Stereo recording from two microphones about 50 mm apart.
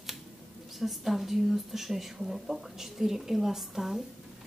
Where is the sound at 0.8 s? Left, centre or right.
Centre.